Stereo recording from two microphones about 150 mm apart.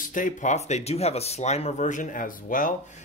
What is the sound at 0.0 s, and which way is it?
Speech, 60° left (ahead or behind).